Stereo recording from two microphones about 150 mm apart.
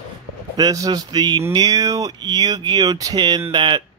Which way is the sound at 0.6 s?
25° right (ahead or behind).